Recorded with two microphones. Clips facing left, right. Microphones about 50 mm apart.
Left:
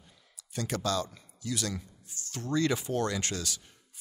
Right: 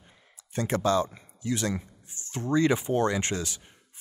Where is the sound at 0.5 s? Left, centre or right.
Right.